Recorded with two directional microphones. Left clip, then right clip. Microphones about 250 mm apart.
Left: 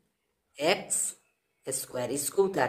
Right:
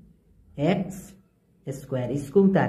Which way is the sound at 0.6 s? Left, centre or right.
Left.